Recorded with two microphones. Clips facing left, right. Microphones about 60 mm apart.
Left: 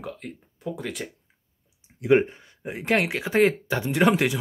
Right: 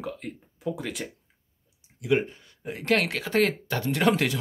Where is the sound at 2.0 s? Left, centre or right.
Left.